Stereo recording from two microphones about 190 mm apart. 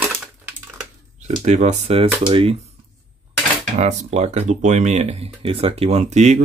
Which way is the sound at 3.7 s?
35° right (ahead or behind).